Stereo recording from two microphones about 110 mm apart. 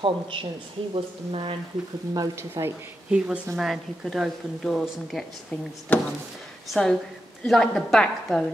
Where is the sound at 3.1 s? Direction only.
10° right (ahead or behind).